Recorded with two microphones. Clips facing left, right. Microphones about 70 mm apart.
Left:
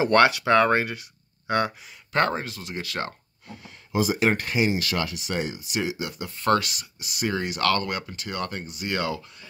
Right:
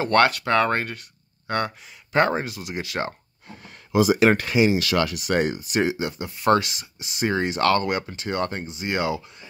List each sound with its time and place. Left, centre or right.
0.0 s speech: centre
2.1 s speech: centre
3.9 s speech: right; by 9.5 s centre